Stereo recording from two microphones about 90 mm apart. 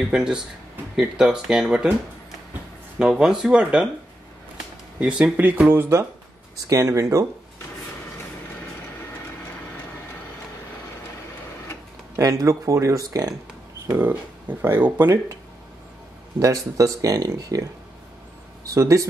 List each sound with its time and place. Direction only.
0.1 s speech: 10° right (ahead or behind)
3.0 s speech: 5° right (ahead or behind)
4.9 s speech: 15° right (ahead or behind); by 7.2 s 35° right (ahead or behind)
12.2 s speech: 35° right (ahead or behind)
13.8 s a sound: 20° right (ahead or behind)
14.6 s speech: 25° right (ahead or behind)
16.3 s speech: 40° right (ahead or behind)